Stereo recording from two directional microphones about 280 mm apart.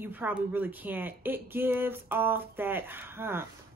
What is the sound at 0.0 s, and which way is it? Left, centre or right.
Speech, centre.